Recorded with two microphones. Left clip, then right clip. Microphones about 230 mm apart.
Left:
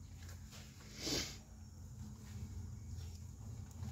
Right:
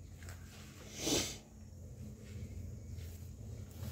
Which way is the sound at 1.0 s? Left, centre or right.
Centre.